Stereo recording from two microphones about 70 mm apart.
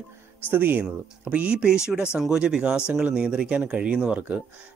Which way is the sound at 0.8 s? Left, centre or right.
Centre.